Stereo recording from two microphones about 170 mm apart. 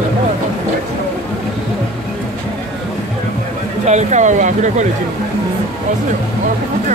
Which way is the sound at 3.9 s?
45° right (ahead or behind).